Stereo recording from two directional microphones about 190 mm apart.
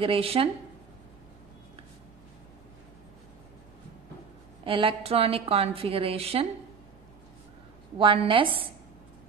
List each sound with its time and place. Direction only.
0.0 s a woman's voice: 30° right (ahead or behind)
4.6 s a woman's voice: 30° right (ahead or behind)
8.0 s a woman's voice: 25° right (ahead or behind)